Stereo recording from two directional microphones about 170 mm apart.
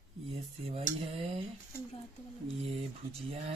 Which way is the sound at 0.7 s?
35° right (ahead or behind).